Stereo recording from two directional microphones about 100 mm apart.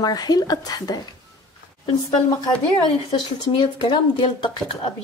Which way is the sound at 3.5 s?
50° left (ahead or behind).